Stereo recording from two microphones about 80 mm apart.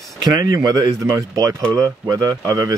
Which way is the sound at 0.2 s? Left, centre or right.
Right.